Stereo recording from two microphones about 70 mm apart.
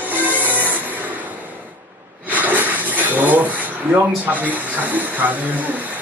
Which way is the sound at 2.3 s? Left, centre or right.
Right.